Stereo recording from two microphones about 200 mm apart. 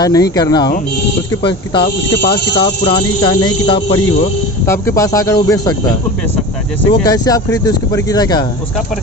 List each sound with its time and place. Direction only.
0.0 s speech: 20° left (ahead or behind)
2.1 s speech: 55° left (ahead or behind)
2.6 s speech: 25° left (ahead or behind)
7.1 s speech: 20° left (ahead or behind)